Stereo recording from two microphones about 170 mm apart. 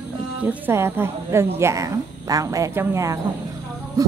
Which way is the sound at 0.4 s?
10° right (ahead or behind).